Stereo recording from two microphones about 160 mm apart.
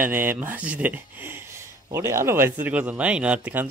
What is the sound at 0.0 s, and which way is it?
Speech, 15° right (ahead or behind).